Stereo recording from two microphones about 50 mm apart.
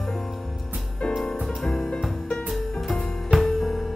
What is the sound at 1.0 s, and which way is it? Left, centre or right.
Music, centre.